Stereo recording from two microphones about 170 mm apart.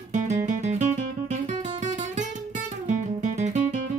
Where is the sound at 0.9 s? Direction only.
45° right (ahead or behind).